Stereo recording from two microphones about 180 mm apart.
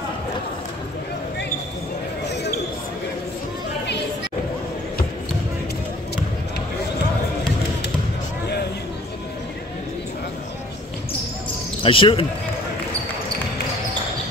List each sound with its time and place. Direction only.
11.8 s speech: 30° left (ahead or behind)